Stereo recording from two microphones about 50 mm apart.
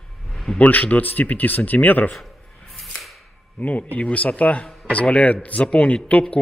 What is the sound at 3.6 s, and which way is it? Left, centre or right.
Speech, left.